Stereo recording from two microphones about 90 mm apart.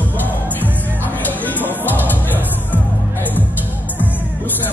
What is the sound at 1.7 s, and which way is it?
Music, 20° left (ahead or behind).